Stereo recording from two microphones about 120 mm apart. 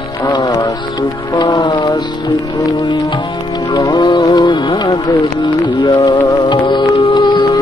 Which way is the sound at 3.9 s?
40° left (ahead or behind).